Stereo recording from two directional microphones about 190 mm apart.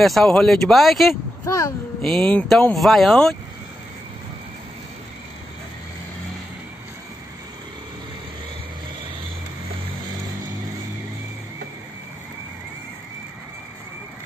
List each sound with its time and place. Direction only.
0.0 s speech: centre (ahead or behind)
1.4 s speech: 15° left (ahead or behind)
2.0 s speech: 5° left (ahead or behind)